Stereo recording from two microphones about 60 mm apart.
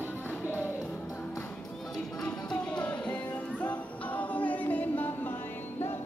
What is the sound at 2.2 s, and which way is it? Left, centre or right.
Music, left.